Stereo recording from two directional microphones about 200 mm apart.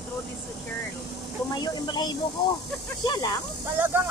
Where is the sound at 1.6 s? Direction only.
20° left (ahead or behind).